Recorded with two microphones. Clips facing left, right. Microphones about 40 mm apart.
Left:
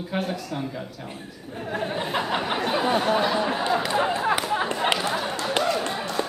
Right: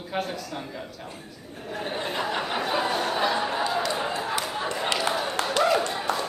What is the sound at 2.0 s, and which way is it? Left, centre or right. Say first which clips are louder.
Speech: left 1 dB; centre.